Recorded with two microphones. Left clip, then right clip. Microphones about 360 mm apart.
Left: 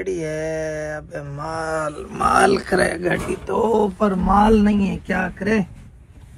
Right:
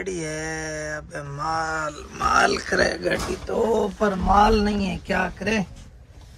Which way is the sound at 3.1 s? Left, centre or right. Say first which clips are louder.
Left 3 dB; left.